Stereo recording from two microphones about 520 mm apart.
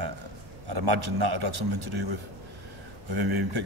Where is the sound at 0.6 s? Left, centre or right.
Right.